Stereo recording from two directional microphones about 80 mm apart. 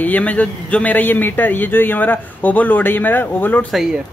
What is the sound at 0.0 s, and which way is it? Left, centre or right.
A man's voice, centre.